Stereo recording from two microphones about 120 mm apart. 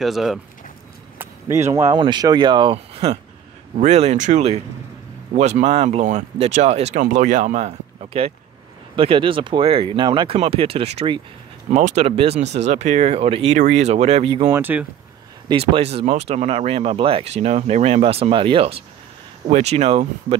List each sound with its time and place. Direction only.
0.0 s speech: centre (ahead or behind)
1.1 s a sound: 20° right (ahead or behind)
2.0 s speech: 40° right (ahead or behind); by 3.2 s 55° right (ahead or behind)
3.7 s speech: 70° right (ahead or behind); by 10.3 s 40° right (ahead or behind)
10.3 s speech: 55° right (ahead or behind)
11.7 s speech: 70° right (ahead or behind)
13.6 s speech: 70° right (ahead or behind); by 14.5 s 55° right (ahead or behind)
14.5 s speech: 15° right (ahead or behind)
15.5 s speech: 55° right (ahead or behind)
19.5 s speech: 65° right (ahead or behind)